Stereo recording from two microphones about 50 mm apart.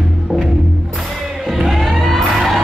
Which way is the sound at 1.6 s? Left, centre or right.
Centre.